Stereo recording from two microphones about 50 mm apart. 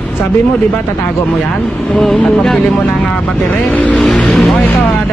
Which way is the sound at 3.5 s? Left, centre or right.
Left.